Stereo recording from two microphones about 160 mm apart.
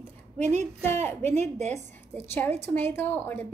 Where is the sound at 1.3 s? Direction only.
45° right (ahead or behind).